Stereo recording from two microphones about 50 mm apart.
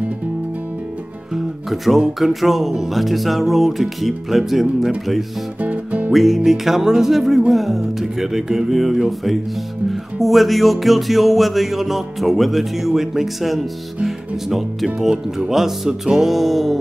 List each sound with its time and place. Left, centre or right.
1.3 s music: centre
5.6 s music: right
6.1 s music: centre
14.0 s speech: centre
15.0 s music: centre